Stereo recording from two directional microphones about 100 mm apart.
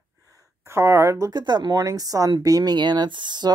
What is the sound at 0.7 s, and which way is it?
Speech, 30° right (ahead or behind).